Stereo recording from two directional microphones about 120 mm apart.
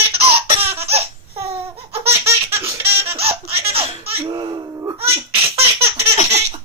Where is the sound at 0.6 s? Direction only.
55° right (ahead or behind).